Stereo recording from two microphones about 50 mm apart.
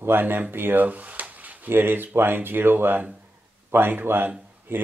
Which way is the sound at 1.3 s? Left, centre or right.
Right.